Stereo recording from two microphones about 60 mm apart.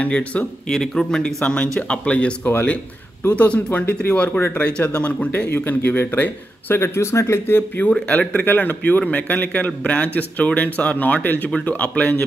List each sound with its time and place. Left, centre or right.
0.0 s speech: left
0.7 s speech: centre
2.4 s speech: left
6.8 s speech: left
7.9 s speech: centre